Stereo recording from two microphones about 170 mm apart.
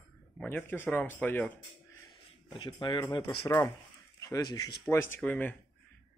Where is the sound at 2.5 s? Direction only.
25° left (ahead or behind).